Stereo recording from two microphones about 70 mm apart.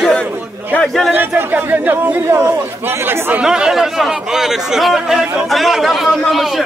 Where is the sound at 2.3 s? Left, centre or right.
Right.